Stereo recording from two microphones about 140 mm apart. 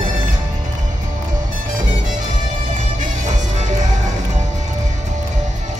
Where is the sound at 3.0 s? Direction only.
60° right (ahead or behind).